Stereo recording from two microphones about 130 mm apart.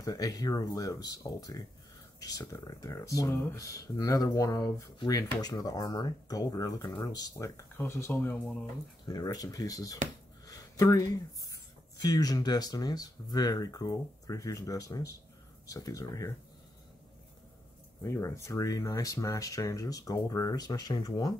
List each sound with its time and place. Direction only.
0.0 s speech: 30° left (ahead or behind)
9.0 s speech: 30° left (ahead or behind)
10.4 s a sound: 25° left (ahead or behind)
12.0 s speech: 30° left (ahead or behind)
18.0 s speech: 20° left (ahead or behind)